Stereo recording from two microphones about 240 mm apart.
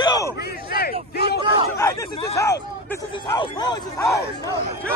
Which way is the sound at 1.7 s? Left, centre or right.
Centre.